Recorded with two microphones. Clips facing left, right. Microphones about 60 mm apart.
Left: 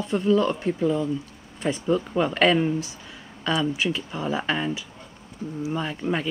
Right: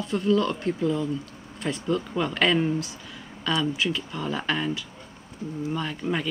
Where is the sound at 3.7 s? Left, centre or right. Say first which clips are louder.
Left 1 dB; centre.